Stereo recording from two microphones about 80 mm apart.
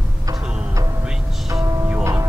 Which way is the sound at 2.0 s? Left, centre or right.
Right.